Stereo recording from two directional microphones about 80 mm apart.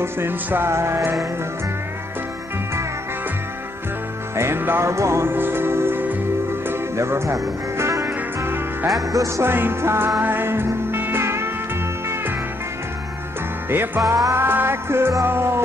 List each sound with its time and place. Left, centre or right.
0.0 s music: right
4.4 s music: right
13.7 s music: right
14.0 s music: right
14.3 s music: right